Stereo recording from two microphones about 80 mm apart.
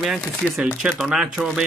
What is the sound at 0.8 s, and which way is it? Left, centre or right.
Speech, centre.